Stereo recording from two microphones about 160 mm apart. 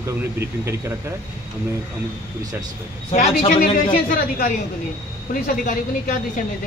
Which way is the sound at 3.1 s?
45° left (ahead or behind).